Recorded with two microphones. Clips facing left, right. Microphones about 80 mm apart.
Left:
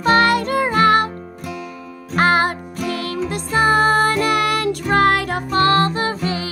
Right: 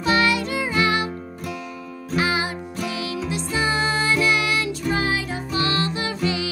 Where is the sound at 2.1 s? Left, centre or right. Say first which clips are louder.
Left 7 dB; left.